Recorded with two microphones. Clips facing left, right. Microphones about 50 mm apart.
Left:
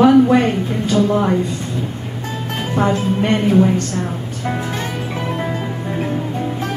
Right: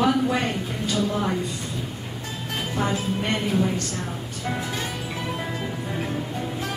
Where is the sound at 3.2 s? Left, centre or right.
Centre.